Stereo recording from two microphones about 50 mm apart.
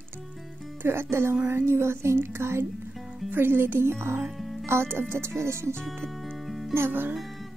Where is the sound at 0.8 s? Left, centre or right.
Right.